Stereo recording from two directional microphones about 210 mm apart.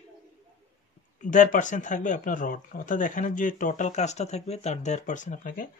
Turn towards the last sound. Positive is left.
turn(degrees=40)  # may be behind; listen again after turning